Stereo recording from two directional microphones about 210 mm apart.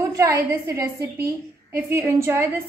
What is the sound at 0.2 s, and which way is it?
A woman's voice, 15° right (ahead or behind).